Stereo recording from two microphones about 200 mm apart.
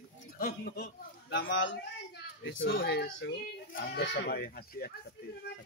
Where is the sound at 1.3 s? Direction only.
65° left (ahead or behind); by 4.9 s 50° left (ahead or behind).